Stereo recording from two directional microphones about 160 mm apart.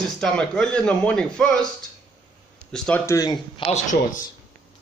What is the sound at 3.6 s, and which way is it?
Speech, 50° left (ahead or behind).